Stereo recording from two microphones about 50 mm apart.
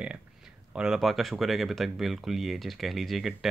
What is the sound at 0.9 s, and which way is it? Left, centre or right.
Speech, centre.